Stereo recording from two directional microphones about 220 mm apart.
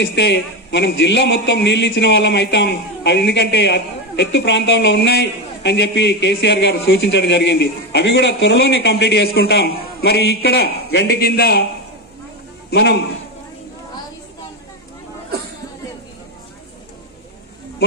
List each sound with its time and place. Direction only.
0.0 s a man's voice: 50° left (ahead or behind)
12.6 s a man's voice: 45° left (ahead or behind)